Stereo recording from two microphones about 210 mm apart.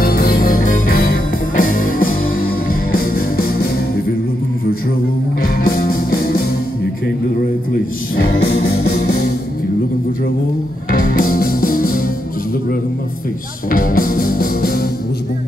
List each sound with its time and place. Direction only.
0.0 s music: 45° left (ahead or behind)
5.4 s music: 45° left (ahead or behind)
8.2 s music: 50° left (ahead or behind)
10.9 s music: 40° left (ahead or behind)
13.7 s music: 40° left (ahead or behind)